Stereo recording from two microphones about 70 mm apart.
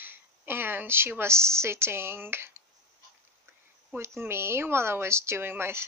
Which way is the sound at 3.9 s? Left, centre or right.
Right.